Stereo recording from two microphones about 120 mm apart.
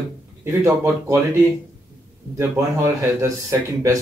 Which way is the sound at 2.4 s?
25° right (ahead or behind).